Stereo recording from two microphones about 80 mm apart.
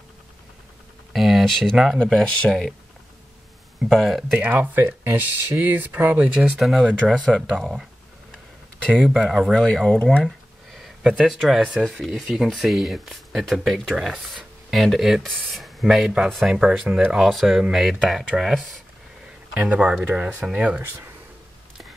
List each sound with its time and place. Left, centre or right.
1.1 s speech: centre
3.9 s speech: centre
4.4 s speech: right
6.6 s speech: centre
8.8 s speech: centre
10.2 s a sound: centre
11.2 s speech: centre
13.9 s speech: centre
19.5 s speech: centre
20.1 s speech: right